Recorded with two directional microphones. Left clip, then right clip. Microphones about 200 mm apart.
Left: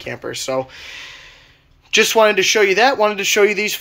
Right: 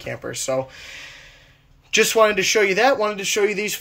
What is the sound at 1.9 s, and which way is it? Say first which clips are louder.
Speech: left 3 dB; 10° right (ahead or behind).